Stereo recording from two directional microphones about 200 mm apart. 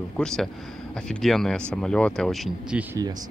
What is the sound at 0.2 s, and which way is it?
Speech, 5° left (ahead or behind).